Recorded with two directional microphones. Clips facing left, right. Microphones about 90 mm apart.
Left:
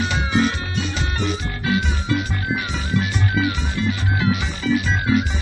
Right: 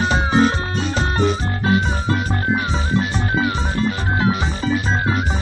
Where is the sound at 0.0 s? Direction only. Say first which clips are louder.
Right 4 dB; 35° right (ahead or behind).